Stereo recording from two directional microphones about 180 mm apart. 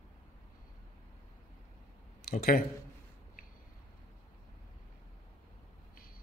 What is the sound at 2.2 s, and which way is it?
Speech, 55° left (ahead or behind).